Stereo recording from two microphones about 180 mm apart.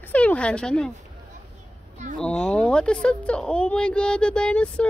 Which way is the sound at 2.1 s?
5° left (ahead or behind).